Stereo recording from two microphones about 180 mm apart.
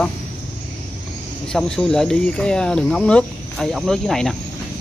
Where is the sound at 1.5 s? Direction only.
5° left (ahead or behind).